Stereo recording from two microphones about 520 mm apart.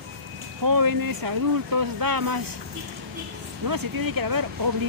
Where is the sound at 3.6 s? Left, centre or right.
Right.